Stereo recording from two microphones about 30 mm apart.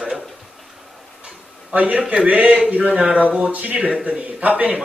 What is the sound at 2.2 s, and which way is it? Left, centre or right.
Speech, right.